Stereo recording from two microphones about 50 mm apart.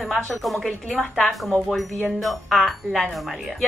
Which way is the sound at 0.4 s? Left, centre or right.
Centre.